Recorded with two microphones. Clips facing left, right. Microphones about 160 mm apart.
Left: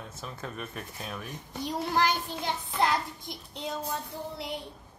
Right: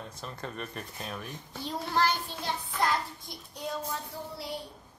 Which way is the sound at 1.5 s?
15° left (ahead or behind).